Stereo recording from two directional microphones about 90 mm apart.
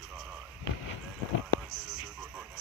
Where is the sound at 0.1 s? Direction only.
10° right (ahead or behind).